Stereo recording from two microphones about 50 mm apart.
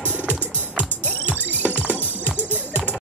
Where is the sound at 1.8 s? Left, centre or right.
Right.